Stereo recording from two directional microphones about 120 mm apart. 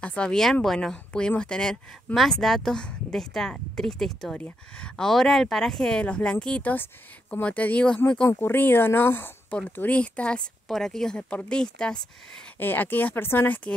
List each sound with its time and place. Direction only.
0.0 s speech: 10° left (ahead or behind)